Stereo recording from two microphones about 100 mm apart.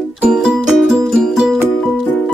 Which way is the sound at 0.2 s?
10° right (ahead or behind).